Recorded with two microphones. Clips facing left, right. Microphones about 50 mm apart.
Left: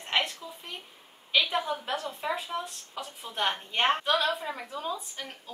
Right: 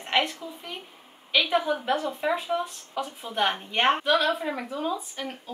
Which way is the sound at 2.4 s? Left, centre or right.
Centre.